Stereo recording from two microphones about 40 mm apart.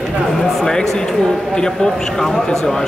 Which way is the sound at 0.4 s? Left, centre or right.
Centre.